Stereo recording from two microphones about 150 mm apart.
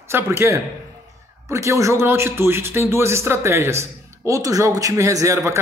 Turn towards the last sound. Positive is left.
turn(degrees=-20)  # may be behind; listen again after turning